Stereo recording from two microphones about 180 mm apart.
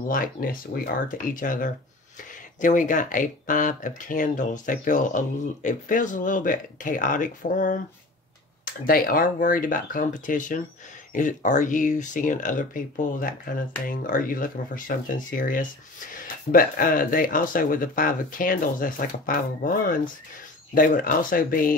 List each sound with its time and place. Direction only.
0.1 s speech: 50° left (ahead or behind)
8.8 s speech: 50° left (ahead or behind)